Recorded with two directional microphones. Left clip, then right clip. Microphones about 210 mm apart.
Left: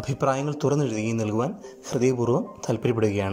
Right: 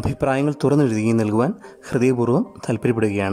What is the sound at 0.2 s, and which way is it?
Speech, 25° right (ahead or behind).